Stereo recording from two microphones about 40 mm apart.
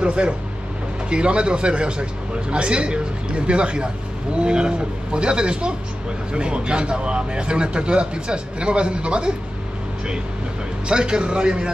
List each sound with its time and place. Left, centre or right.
0.0 s a man's voice: right
10.9 s a man's voice: right